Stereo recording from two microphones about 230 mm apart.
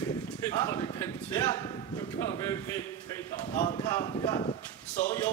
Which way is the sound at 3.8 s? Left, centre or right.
Centre.